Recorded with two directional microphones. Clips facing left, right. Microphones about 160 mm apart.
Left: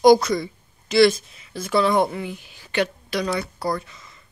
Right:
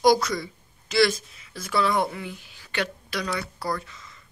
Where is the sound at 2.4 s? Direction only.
20° left (ahead or behind).